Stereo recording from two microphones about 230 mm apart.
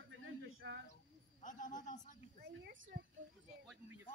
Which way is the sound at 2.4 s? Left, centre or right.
Right.